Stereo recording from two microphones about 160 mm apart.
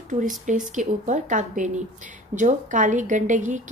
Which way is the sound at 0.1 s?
55° right (ahead or behind).